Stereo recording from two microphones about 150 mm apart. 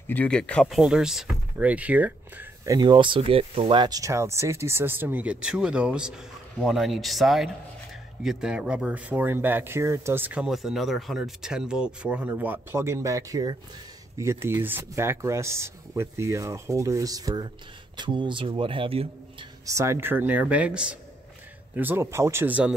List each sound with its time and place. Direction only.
0.1 s a man's voice: 10° left (ahead or behind); by 19.0 s 40° right (ahead or behind)
19.6 s speech: 20° right (ahead or behind)